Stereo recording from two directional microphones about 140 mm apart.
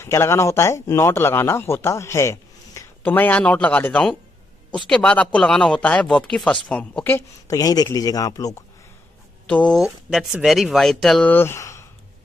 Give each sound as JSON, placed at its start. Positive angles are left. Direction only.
{"t": 0.0, "sound": "speech", "side_deg": 20}
{"t": 9.5, "sound": "speech", "side_deg": 10}
{"t": 9.8, "sound": "speech", "side_deg": -5}